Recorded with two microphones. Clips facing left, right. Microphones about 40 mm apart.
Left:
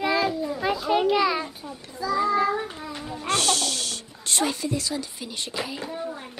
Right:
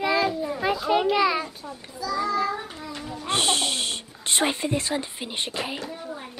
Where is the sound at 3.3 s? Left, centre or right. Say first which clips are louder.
Even; right.